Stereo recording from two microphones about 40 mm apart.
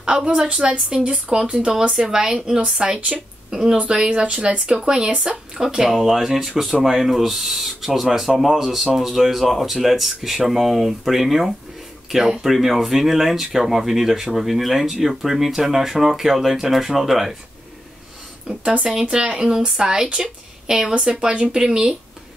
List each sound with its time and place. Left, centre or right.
0.0 s a woman's voice: right; by 17.4 s centre
18.5 s speech: right